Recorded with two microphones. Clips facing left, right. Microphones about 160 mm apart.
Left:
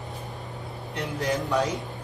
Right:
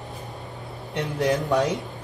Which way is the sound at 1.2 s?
20° right (ahead or behind).